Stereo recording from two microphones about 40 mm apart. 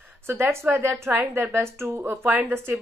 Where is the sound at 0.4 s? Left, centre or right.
Right.